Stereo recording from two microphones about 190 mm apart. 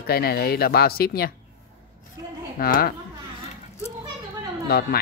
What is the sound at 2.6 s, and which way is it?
Speech, 50° left (ahead or behind).